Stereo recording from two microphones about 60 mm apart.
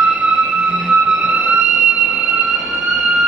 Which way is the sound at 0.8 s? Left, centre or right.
Centre.